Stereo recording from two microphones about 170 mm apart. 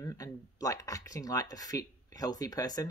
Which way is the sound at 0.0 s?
20° left (ahead or behind).